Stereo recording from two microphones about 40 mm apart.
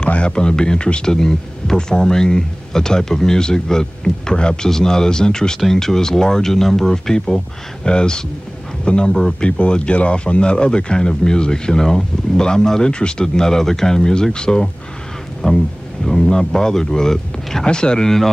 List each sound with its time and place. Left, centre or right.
0.0 s speech: left
1.1 s a man's voice: centre
16.3 s speech: centre